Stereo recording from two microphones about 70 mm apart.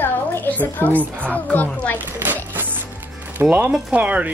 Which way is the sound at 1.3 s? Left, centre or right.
Left.